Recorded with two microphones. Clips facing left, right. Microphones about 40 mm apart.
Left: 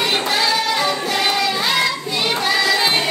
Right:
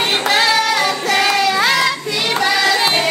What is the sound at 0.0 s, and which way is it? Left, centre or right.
Music, right.